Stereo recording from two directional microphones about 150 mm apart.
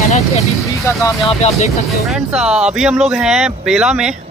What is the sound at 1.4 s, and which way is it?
Speech, 45° left (ahead or behind).